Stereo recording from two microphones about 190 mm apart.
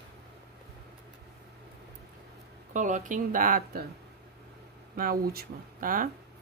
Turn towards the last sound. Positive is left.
turn(degrees=-45)  # may be behind; listen again after turning